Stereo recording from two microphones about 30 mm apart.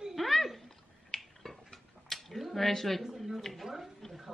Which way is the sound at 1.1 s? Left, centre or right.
Centre.